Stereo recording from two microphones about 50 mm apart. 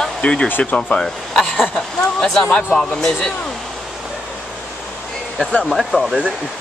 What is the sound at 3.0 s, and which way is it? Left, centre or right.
Speech, centre.